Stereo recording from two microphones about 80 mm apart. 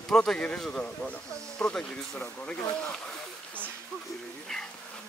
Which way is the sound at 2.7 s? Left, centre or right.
Centre.